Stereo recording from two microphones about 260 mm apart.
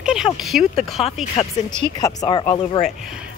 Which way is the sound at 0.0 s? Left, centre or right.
Centre.